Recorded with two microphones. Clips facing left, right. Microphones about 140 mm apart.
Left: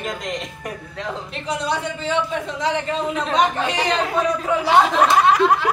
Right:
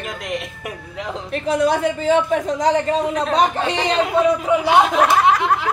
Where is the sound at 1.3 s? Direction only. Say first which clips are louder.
Right 8 dB; 50° right (ahead or behind).